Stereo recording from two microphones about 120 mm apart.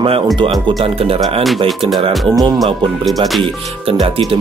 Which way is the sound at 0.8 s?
50° right (ahead or behind).